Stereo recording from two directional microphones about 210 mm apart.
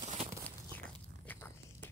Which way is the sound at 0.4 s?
10° left (ahead or behind).